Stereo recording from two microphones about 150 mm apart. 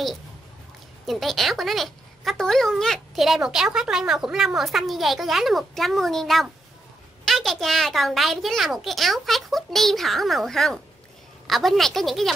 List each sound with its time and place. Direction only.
1.0 s speech: centre (ahead or behind)